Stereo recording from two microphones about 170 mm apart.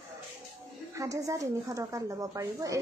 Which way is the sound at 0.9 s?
20° right (ahead or behind).